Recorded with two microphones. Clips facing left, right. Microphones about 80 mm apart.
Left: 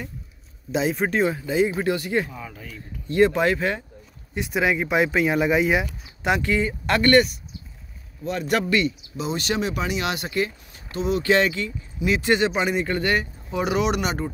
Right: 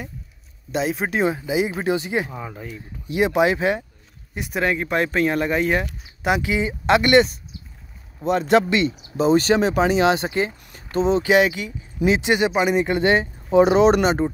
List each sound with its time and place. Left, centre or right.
0.7 s speech: centre
1.2 s speech: centre
2.7 s speech: centre
4.4 s speech: centre
6.2 s speech: centre; by 8.9 s right
9.1 s speech: right
11.2 s speech: centre; by 14.3 s right